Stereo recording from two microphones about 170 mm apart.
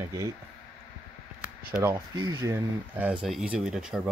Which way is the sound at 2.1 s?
25° right (ahead or behind).